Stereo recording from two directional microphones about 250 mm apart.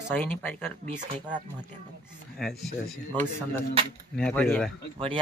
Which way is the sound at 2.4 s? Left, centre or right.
Centre.